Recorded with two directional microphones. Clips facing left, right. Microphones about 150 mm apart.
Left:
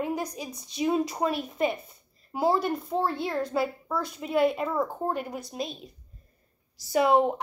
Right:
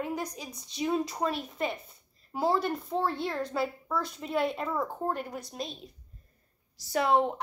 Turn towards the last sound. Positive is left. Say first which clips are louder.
# left 4 dB
turn(degrees=10)  # may be behind; listen again after turning